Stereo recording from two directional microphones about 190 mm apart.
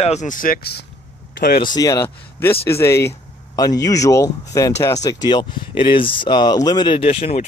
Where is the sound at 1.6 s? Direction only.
20° left (ahead or behind).